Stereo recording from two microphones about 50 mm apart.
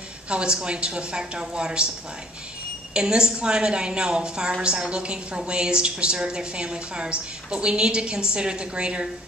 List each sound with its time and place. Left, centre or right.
0.3 s a woman's voice: centre
2.9 s a woman's voice: centre